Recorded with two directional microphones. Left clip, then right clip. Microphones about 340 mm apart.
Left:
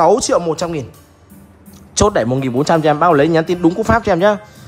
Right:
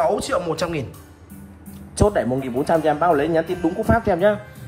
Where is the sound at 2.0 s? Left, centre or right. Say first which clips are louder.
Left 5 dB; right.